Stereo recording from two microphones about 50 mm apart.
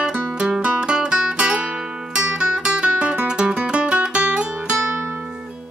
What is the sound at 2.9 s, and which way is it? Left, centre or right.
Guitar, right.